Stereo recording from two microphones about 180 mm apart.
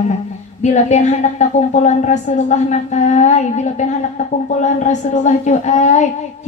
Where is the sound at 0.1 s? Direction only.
40° left (ahead or behind).